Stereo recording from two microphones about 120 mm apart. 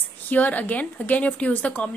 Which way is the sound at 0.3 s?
15° left (ahead or behind).